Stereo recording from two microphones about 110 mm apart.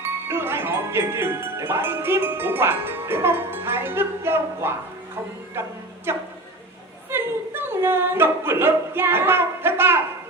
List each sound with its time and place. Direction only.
0.0 s speech: 20° right (ahead or behind)